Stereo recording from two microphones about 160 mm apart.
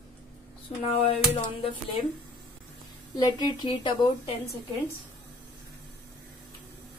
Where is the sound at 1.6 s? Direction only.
35° left (ahead or behind).